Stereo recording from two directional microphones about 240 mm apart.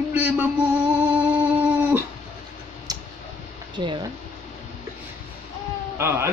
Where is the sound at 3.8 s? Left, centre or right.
Centre.